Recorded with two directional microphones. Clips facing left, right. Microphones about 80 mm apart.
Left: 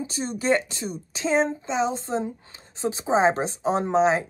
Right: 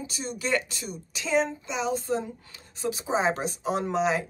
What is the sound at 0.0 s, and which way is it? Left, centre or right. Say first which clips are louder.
Speech: left 5 dB; left.